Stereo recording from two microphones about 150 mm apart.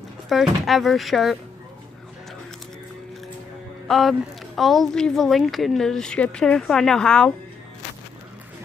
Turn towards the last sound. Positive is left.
turn(degrees=5)  # may be behind; listen again after turning